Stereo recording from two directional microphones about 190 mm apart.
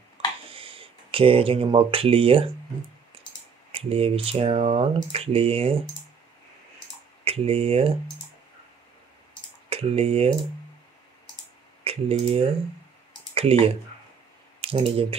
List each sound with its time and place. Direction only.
0.5 s speech: 30° right (ahead or behind)
3.7 s speech: 30° right (ahead or behind)
7.2 s speech: 30° right (ahead or behind)
9.7 s speech: 30° right (ahead or behind)
11.8 s speech: 30° right (ahead or behind)